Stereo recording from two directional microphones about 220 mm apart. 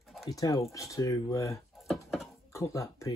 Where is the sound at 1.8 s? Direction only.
Centre (ahead or behind).